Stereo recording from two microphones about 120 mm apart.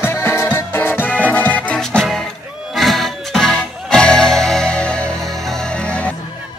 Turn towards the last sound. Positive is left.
turn(degrees=10)  # may be behind; listen again after turning